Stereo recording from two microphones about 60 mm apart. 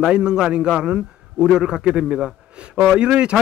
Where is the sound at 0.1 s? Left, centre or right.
Centre.